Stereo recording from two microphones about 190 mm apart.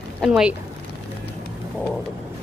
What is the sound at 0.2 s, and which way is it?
Speech, 5° right (ahead or behind).